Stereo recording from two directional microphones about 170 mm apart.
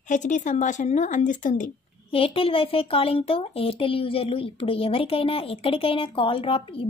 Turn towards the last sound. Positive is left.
turn(degrees=30)  # may be behind; listen again after turning